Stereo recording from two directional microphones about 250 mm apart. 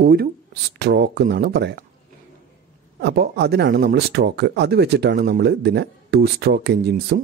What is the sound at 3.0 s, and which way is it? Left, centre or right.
Speech, right.